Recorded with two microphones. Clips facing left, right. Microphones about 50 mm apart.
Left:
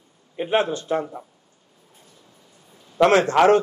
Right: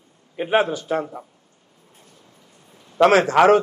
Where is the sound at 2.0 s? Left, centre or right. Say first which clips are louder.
Right 2 dB; right.